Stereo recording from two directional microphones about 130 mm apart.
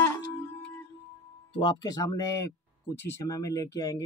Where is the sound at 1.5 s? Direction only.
30° left (ahead or behind).